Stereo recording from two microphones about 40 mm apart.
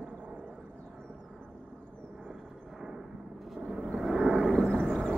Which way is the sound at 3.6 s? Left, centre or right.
Centre.